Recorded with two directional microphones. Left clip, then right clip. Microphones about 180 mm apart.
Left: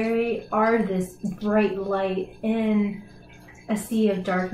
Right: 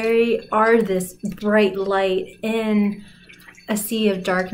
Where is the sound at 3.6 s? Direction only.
30° right (ahead or behind).